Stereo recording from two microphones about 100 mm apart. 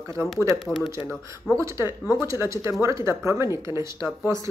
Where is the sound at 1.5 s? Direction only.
30° right (ahead or behind).